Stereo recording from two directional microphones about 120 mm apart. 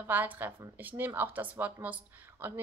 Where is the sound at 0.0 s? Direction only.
15° right (ahead or behind).